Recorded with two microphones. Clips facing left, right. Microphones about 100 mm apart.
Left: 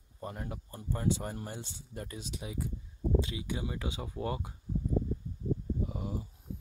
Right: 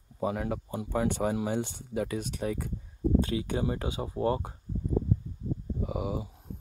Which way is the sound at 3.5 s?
40° right (ahead or behind).